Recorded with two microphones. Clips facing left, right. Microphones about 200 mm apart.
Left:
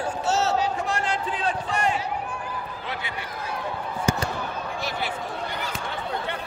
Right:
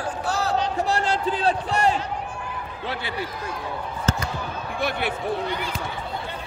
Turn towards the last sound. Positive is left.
turn(degrees=-55)  # may be behind; listen again after turning